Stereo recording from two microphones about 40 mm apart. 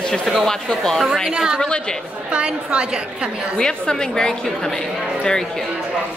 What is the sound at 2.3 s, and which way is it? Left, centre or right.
Speech, right.